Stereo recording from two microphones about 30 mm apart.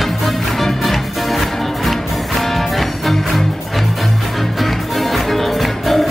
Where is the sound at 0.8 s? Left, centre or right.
Centre.